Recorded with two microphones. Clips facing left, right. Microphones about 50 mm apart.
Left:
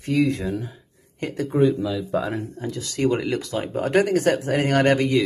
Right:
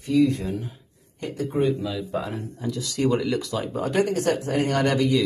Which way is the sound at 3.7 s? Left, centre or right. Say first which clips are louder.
Left 4 dB; left.